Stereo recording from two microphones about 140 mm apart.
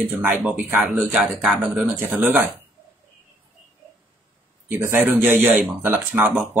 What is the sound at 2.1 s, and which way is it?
Speech, 15° right (ahead or behind).